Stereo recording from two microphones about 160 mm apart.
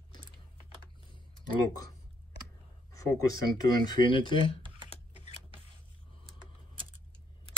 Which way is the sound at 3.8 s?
30° left (ahead or behind).